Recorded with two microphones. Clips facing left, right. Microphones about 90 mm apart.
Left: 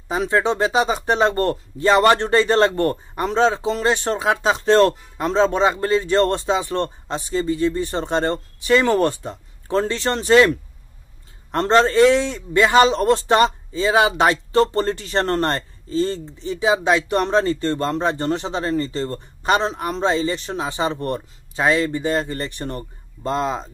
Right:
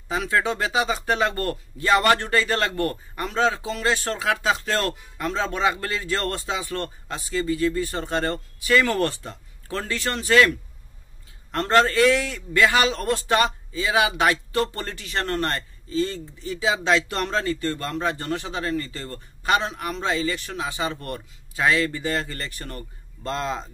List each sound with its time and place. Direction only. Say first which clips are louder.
0.1 s a man's voice: left 4 dB; 25° left (ahead or behind)
11.5 s a man's voice: left 4 dB; 25° left (ahead or behind)